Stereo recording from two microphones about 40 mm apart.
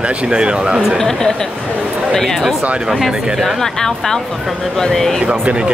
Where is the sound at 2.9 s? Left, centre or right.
Centre.